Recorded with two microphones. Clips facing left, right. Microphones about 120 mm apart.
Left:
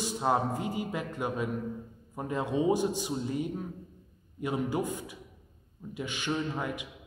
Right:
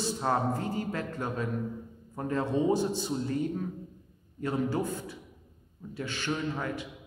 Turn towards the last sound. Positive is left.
turn(degrees=15)  # may be behind; listen again after turning